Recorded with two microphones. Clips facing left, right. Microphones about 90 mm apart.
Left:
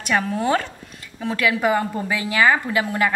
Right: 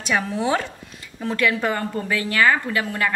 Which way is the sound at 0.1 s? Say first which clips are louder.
Left 1 dB; centre (ahead or behind).